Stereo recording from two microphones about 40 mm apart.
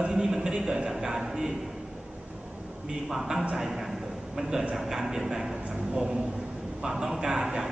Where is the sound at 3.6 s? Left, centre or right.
Centre.